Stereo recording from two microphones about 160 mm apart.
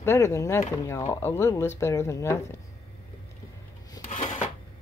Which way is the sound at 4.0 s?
25° left (ahead or behind).